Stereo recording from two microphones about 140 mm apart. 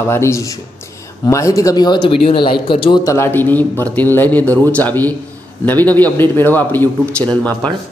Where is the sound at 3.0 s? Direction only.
20° left (ahead or behind).